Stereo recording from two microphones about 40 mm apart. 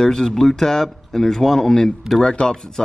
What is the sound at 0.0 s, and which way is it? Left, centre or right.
Speech, centre.